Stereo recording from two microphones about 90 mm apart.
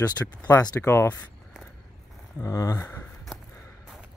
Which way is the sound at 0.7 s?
25° left (ahead or behind).